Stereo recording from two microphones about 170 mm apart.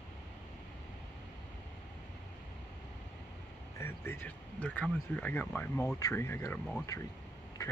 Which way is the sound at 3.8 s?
15° left (ahead or behind).